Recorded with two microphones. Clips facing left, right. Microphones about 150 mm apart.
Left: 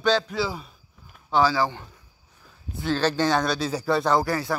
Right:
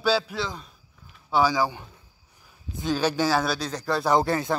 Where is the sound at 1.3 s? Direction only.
10° right (ahead or behind).